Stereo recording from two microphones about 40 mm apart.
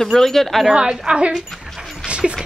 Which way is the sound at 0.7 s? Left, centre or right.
Right.